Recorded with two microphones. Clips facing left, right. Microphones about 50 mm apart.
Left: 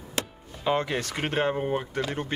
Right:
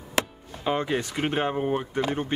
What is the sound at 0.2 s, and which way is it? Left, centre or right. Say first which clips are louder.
Music: right 1 dB; centre.